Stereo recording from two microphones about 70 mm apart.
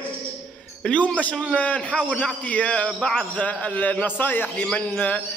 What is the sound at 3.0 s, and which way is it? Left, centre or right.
Speech, centre.